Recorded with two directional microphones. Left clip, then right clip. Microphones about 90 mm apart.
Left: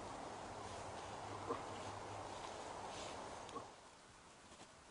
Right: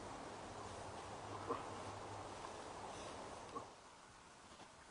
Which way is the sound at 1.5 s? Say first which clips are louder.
Right 1 dB; 20° left (ahead or behind).